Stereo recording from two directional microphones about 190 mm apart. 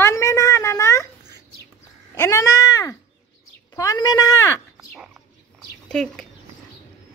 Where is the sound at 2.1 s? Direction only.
15° left (ahead or behind).